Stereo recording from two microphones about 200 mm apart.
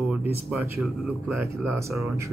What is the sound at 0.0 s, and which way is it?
Speech, 5° right (ahead or behind).